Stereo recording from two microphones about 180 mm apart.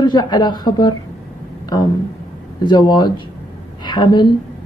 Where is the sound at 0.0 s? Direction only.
25° left (ahead or behind).